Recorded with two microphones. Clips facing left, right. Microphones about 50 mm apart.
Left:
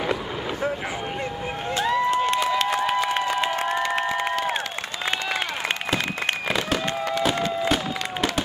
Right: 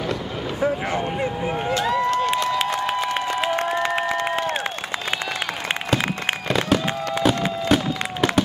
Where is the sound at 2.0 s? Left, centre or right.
Left.